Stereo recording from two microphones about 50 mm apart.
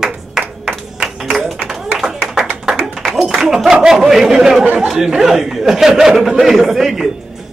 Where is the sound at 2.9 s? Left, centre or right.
Centre.